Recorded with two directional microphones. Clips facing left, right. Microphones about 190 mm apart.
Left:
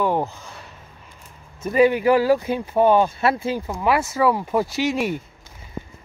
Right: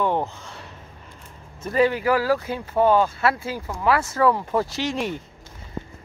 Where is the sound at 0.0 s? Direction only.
10° left (ahead or behind).